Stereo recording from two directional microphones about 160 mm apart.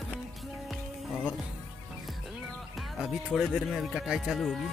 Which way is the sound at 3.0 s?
5° right (ahead or behind).